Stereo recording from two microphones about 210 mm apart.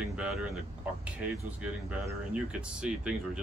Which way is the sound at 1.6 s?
5° right (ahead or behind).